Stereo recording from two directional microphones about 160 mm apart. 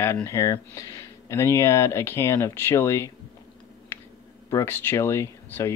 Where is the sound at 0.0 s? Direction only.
15° left (ahead or behind).